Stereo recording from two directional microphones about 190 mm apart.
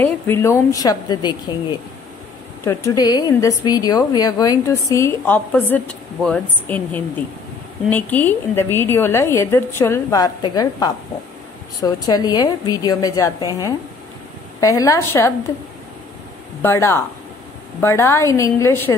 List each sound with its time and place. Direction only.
0.0 s a woman's voice: 15° left (ahead or behind)
2.6 s a woman's voice: 15° left (ahead or behind)
16.6 s a woman's voice: 15° left (ahead or behind)